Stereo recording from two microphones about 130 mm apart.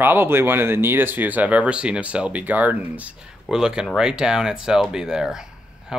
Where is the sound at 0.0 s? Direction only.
15° right (ahead or behind).